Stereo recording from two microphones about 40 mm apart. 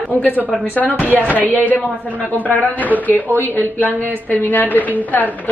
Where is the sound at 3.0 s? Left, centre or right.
Left.